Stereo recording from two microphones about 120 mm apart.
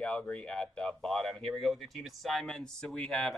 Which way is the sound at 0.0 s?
5° left (ahead or behind).